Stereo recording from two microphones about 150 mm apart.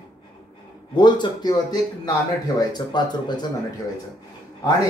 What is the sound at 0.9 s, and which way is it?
Speech, 30° left (ahead or behind).